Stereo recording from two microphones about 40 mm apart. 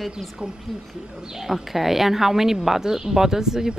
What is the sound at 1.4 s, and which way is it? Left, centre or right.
Speech, centre.